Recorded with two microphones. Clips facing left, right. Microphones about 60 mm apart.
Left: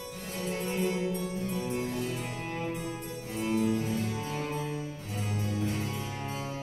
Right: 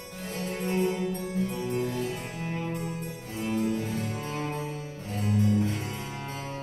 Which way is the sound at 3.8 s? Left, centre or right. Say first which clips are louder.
Even; right.